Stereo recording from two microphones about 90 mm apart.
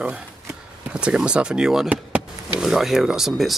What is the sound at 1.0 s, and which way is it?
Speech, 10° right (ahead or behind).